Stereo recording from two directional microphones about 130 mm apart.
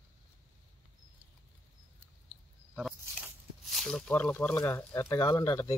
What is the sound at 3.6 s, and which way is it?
Speech, centre (ahead or behind).